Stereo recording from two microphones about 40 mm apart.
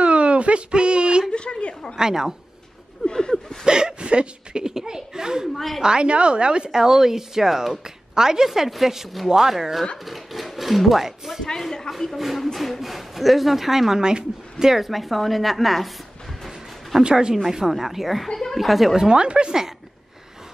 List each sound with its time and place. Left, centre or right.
0.0 s a sound: right
1.3 s a sound: left
2.0 s a woman's voice: centre
3.1 s a sound: centre
3.6 s speech: right
5.5 s speech: centre
5.8 s speech: right
6.8 s a woman's voice: centre
17.0 s speech: centre
17.5 s speech: centre
18.3 s speech: centre
18.6 s speech: centre
18.9 s speech: right